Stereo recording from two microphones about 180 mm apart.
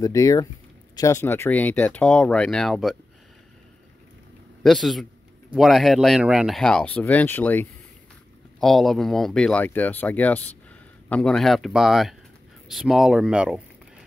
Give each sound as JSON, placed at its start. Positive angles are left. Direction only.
{"t": 0.0, "sound": "speech", "side_deg": 20}
{"t": 4.6, "sound": "speech", "side_deg": 0}